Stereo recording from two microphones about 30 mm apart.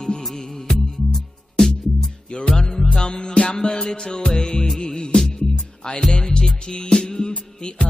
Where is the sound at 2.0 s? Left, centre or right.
Left.